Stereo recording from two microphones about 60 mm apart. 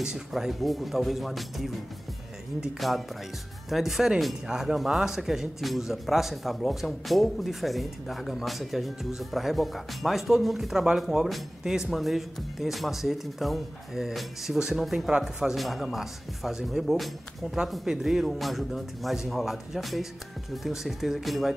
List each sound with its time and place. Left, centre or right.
0.0 s a man's voice: centre
2.8 s a man's voice: centre
15.0 s speech: centre
15.5 s a man's voice: centre